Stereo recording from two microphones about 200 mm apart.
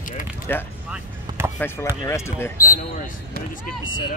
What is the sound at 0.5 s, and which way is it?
Speech, 10° left (ahead or behind).